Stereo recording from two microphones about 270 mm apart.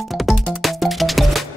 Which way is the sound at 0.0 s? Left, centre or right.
Centre.